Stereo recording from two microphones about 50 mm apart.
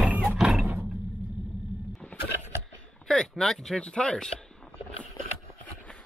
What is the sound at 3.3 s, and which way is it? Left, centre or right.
Speech, centre.